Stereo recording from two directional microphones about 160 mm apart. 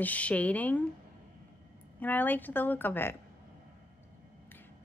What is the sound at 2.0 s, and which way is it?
A woman's voice, 10° left (ahead or behind).